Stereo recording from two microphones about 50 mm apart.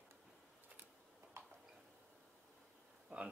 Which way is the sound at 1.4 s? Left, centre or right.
Right.